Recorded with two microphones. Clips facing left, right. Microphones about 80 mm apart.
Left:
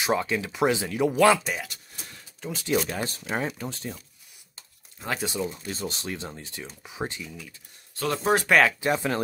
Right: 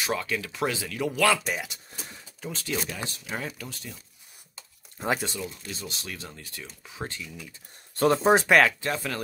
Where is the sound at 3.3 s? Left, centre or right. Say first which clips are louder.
Left 5 dB; left.